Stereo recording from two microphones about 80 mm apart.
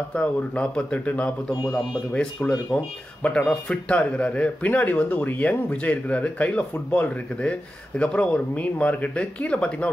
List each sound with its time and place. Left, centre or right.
0.1 s speech: centre